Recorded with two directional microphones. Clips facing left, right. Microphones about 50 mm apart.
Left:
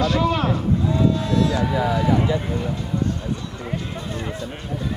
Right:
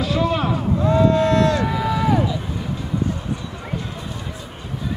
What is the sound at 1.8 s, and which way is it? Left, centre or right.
Run, left.